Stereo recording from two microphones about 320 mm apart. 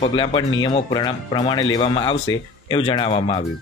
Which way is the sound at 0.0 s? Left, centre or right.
Centre.